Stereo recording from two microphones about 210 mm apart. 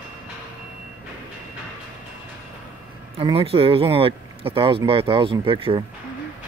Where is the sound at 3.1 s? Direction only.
25° right (ahead or behind).